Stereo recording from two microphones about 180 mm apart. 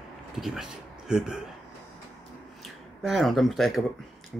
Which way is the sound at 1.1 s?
5° right (ahead or behind).